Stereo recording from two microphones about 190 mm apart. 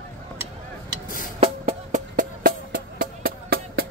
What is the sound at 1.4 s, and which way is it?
Music, 35° right (ahead or behind).